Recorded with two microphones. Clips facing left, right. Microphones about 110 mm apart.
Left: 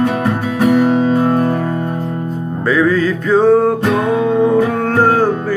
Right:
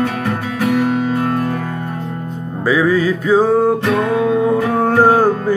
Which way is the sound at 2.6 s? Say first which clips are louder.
Left 1 dB; 10° right (ahead or behind).